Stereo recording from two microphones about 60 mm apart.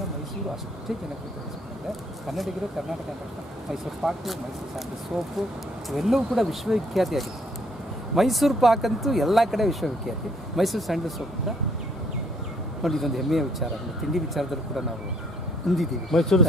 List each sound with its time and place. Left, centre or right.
2.2 s speech: centre
3.7 s speech: centre
5.9 s speech: centre
12.8 s speech: centre
15.7 s speech: centre